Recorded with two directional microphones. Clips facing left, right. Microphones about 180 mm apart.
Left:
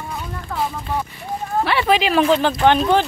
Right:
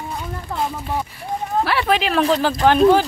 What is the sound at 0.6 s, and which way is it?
Speech, 10° right (ahead or behind).